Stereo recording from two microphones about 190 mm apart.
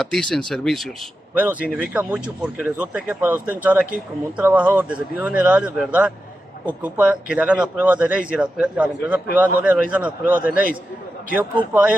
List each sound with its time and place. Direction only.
0.0 s speech: centre (ahead or behind)
1.3 s speech: 10° right (ahead or behind)